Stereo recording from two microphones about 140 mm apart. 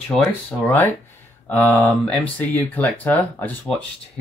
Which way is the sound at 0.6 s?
15° left (ahead or behind).